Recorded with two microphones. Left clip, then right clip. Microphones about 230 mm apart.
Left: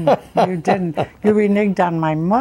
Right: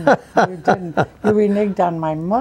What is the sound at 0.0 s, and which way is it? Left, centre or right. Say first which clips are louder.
A man's voice: right 1 dB; right.